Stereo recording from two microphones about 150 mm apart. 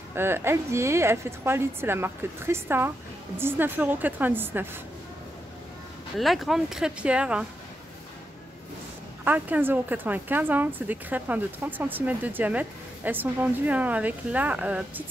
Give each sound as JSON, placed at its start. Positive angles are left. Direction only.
{"t": 0.1, "sound": "speech", "side_deg": -15}
{"t": 6.1, "sound": "speech", "side_deg": 0}
{"t": 9.2, "sound": "speech", "side_deg": -10}